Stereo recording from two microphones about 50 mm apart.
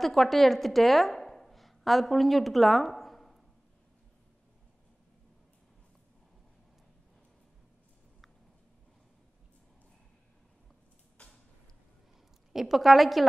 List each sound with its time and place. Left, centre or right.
0.0 s a woman's voice: centre
11.2 s a sound: left
12.5 s a woman's voice: centre